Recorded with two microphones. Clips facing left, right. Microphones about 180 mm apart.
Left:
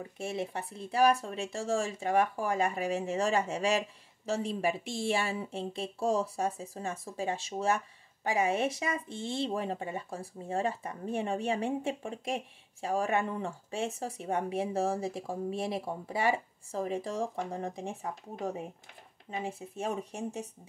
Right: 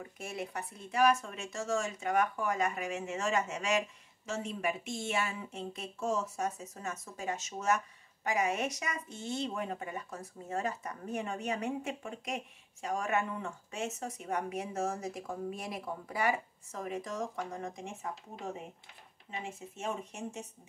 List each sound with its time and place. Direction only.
0.2 s speech: 30° left (ahead or behind)
19.4 s speech: 35° left (ahead or behind)